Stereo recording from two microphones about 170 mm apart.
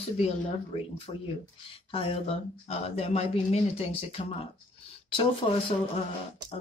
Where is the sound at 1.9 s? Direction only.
35° left (ahead or behind).